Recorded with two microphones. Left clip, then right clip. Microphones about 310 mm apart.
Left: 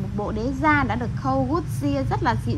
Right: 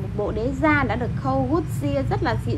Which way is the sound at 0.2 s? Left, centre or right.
Centre.